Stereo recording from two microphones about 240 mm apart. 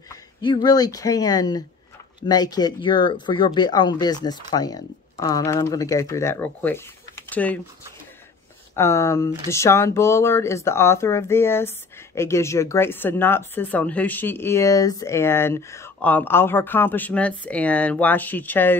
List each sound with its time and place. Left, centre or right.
0.1 s speech: centre
8.7 s speech: centre